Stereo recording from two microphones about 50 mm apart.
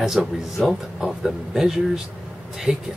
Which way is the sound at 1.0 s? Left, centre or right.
Centre.